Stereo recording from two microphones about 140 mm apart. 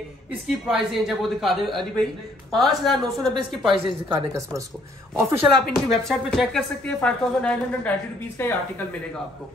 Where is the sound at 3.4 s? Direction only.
35° right (ahead or behind).